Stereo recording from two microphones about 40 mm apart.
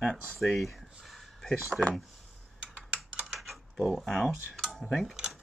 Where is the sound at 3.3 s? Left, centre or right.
Centre.